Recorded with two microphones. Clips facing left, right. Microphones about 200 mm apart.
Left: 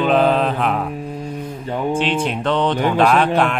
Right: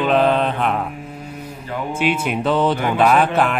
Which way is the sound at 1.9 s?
10° right (ahead or behind).